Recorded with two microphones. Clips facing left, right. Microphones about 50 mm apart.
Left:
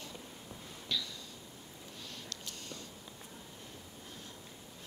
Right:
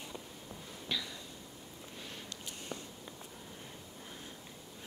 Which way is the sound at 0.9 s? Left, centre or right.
Right.